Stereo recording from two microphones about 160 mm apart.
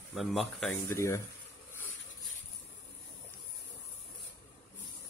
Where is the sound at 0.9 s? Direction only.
15° left (ahead or behind).